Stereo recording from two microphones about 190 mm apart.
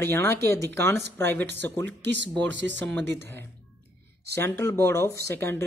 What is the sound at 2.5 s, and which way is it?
Speech, 75° right (ahead or behind).